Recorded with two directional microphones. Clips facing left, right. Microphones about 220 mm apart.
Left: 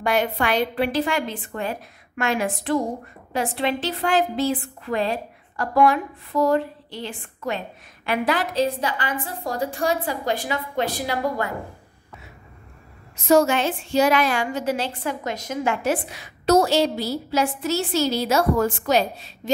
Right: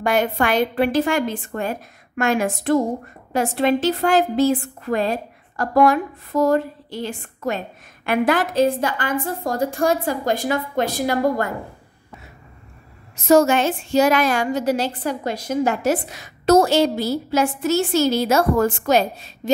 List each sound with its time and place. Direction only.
0.0 s a woman's voice: 45° right (ahead or behind)
13.1 s a woman's voice: 45° right (ahead or behind)